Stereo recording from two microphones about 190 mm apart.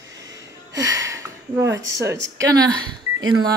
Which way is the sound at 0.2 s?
20° right (ahead or behind).